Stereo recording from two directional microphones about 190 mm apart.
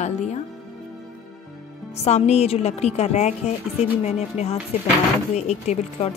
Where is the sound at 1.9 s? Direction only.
35° left (ahead or behind).